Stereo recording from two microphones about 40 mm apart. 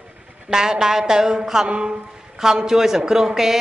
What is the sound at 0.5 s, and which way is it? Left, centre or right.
A man's voice, centre.